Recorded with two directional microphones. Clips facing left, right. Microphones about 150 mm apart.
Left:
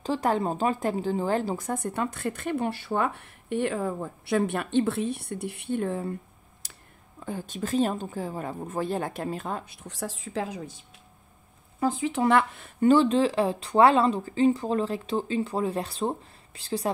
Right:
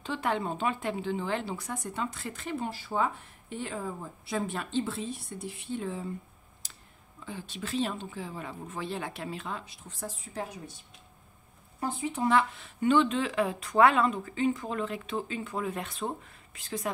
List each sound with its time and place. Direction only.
0.0 s speech: 40° left (ahead or behind); by 6.1 s 55° left (ahead or behind)
7.2 s speech: 45° left (ahead or behind)
9.8 s a woman's voice: 85° left
11.9 s speech: 90° left; by 16.9 s 30° left (ahead or behind)